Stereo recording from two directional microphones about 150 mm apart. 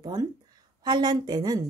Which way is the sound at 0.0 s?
25° right (ahead or behind).